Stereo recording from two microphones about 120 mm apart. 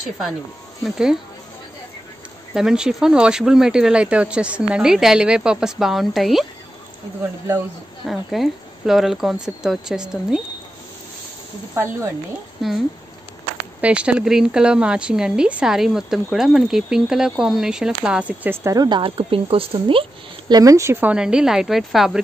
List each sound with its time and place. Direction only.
0.8 s speech: 5° right (ahead or behind)
2.5 s speech: 5° right (ahead or behind)
8.1 s speech: centre (ahead or behind)
11.7 s speech: 20° right (ahead or behind)
12.6 s speech: centre (ahead or behind); by 18.9 s 25° right (ahead or behind)
18.9 s speech: 45° right (ahead or behind); by 22.2 s centre (ahead or behind)